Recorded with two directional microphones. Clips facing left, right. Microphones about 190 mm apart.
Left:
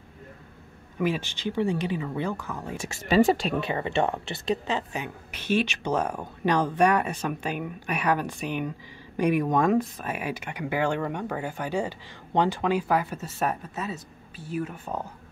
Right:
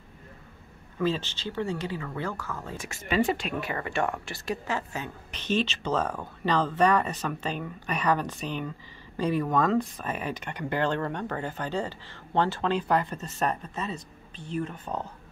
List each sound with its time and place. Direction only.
0.9 s a woman's voice: 15° left (ahead or behind)
3.1 s speech: 40° left (ahead or behind)
3.6 s a woman's voice: 25° left (ahead or behind)